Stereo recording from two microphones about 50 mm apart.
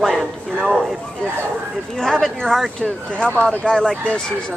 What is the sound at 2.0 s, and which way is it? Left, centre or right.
Speech, centre.